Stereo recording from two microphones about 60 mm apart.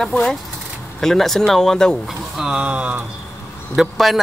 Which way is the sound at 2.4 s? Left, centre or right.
Centre.